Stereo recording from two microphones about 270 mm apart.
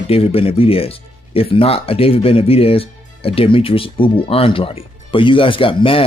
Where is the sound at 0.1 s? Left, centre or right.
Left.